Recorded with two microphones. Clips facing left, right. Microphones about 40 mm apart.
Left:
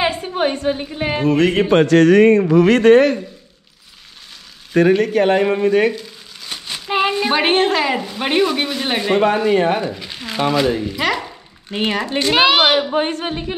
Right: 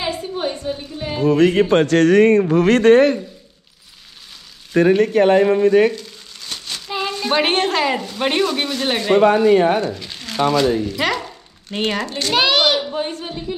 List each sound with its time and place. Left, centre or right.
0.0 s a woman's voice: left
4.8 s speech: left
5.9 s crumpling: centre
6.9 s a sound: left
7.3 s speech: centre
12.1 s a woman's voice: left
12.9 s speech: left